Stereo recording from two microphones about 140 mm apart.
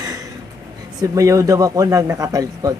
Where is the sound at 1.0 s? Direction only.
25° right (ahead or behind).